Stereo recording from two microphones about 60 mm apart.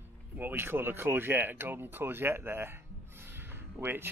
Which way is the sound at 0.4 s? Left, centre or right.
Right.